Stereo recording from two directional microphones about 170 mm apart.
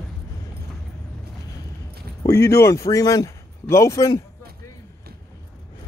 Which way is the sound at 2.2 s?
15° left (ahead or behind).